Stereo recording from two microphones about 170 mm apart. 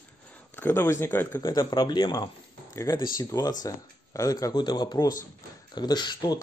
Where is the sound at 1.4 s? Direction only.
25° left (ahead or behind).